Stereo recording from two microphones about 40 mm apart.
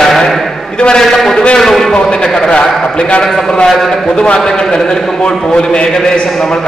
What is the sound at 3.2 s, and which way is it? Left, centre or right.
Speech, centre.